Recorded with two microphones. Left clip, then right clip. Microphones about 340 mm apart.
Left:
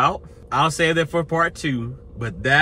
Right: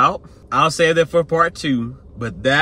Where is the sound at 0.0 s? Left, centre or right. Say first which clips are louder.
Right 4 dB; centre.